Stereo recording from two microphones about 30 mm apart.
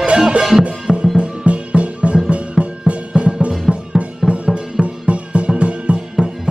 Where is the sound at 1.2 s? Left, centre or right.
Right.